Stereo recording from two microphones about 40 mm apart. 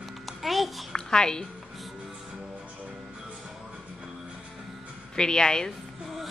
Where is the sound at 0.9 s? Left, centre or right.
Centre.